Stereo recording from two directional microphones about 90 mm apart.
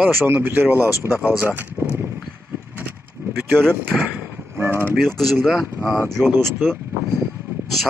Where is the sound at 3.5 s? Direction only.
5° left (ahead or behind).